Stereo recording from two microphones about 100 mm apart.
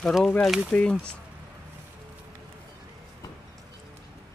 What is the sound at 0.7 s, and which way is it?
Speech, 10° left (ahead or behind).